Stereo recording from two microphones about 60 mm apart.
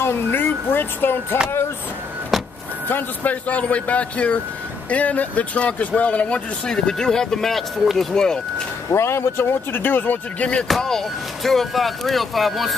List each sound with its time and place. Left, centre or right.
0.0 s speech: left
2.9 s speech: left
6.7 s speech: centre
8.9 s speech: left
10.7 s speech: centre